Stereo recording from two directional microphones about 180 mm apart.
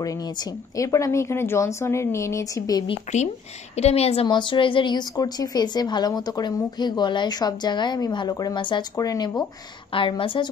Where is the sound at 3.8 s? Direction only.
35° left (ahead or behind).